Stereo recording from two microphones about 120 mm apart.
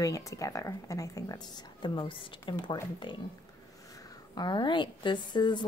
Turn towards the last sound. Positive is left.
turn(degrees=40)  # may be behind; listen again after turning